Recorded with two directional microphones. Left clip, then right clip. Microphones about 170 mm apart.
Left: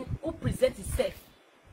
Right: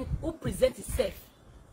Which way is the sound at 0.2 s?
15° right (ahead or behind).